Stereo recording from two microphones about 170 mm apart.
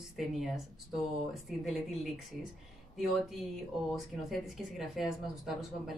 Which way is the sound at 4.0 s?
Centre (ahead or behind).